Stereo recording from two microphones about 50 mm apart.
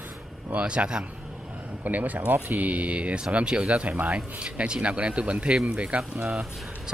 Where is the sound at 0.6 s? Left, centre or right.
Right.